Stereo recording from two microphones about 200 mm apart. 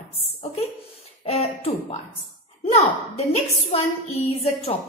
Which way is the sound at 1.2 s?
30° left (ahead or behind).